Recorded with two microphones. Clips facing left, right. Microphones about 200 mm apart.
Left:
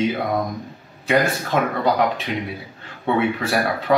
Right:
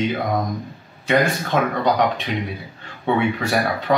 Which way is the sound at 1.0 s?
5° left (ahead or behind).